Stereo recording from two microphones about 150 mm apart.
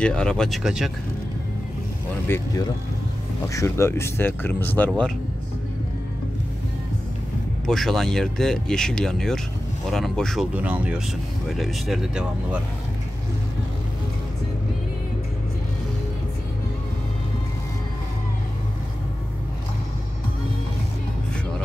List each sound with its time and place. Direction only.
0.0 s speech: 5° left (ahead or behind)
2.2 s speech: 15° left (ahead or behind)
7.6 s speech: centre (ahead or behind)
10.5 s speech: 10° right (ahead or behind)